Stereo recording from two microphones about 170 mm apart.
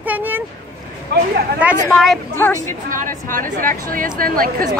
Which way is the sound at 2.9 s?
50° right (ahead or behind).